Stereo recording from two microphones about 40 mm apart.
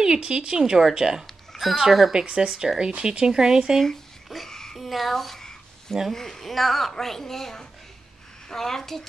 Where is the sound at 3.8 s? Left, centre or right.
Centre.